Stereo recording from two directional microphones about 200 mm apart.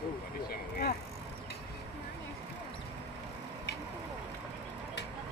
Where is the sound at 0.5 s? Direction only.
50° left (ahead or behind).